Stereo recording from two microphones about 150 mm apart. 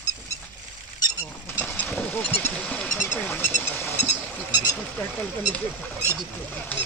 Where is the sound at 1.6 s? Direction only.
10° left (ahead or behind).